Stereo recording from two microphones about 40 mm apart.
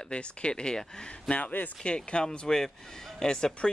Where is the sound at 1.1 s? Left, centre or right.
Left; by 3.7 s centre.